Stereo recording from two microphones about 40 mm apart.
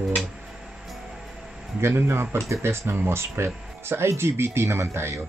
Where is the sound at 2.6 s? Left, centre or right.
Right.